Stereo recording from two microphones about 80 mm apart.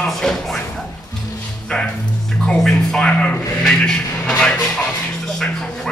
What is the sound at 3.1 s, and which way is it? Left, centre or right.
Speech, centre.